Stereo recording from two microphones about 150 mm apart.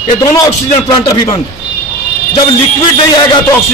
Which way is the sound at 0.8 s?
25° left (ahead or behind).